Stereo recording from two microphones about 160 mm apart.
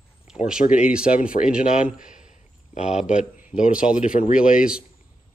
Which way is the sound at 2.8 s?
5° right (ahead or behind).